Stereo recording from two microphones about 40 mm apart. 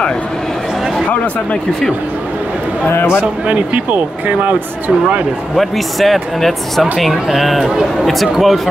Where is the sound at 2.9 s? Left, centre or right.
Left.